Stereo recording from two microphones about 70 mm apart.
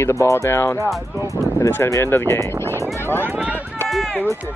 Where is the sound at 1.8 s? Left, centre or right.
Left.